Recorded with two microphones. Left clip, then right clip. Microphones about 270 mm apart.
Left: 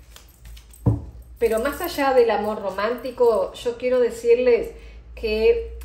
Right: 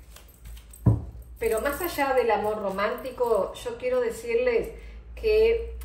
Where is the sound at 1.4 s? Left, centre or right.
Left.